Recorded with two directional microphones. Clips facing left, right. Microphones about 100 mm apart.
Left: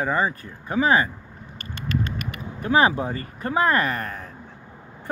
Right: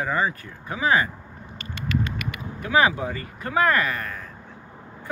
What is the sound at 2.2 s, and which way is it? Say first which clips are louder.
Speech: left 4 dB; 40° left (ahead or behind).